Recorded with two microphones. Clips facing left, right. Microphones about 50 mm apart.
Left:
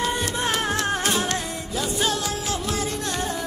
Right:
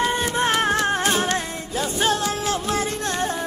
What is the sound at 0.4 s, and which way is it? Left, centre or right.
Music, right.